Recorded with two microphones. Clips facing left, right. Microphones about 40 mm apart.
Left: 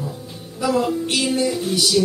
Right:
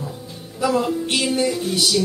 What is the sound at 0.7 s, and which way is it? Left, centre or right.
Speech, centre.